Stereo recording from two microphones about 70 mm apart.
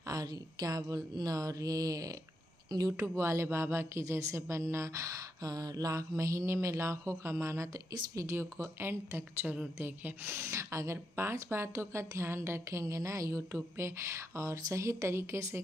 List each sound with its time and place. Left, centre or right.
0.0 s speech: right